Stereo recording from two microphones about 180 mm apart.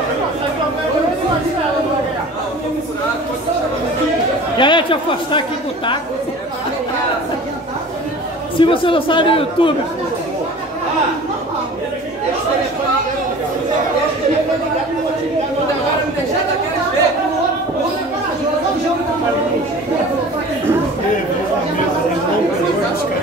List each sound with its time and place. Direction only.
4.6 s speech: 25° left (ahead or behind)
8.5 s speech: 30° left (ahead or behind)